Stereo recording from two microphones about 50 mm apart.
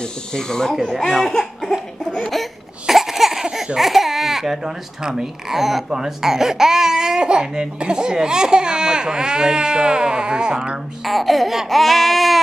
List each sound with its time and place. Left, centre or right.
0.3 s speech: centre
1.1 s laughter: centre
2.9 s a sound: centre
3.7 s speech: centre
11.1 s baby cry: centre